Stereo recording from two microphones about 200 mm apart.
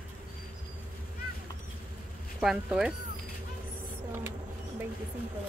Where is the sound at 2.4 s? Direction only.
5° right (ahead or behind).